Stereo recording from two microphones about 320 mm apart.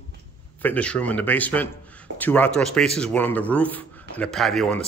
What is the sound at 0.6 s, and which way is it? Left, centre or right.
Speech, centre.